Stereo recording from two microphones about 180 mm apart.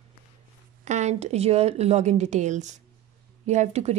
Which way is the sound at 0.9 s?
40° right (ahead or behind).